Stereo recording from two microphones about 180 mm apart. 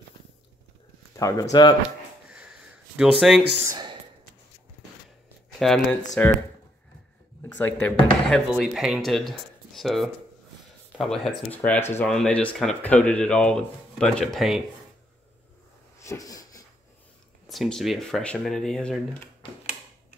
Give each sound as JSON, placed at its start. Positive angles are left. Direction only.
{"t": 1.1, "sound": "speech", "side_deg": 20}
{"t": 3.2, "sound": "speech", "side_deg": 0}
{"t": 3.6, "sound": "a sound", "side_deg": -25}
{"t": 5.6, "sound": "speech", "side_deg": 0}
{"t": 7.4, "sound": "speech", "side_deg": 10}
{"t": 16.0, "sound": "a sound", "side_deg": 20}
{"t": 17.5, "sound": "speech", "side_deg": 0}